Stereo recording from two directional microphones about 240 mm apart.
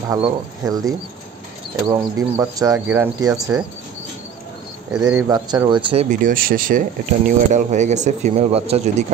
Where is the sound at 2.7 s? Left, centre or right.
Centre.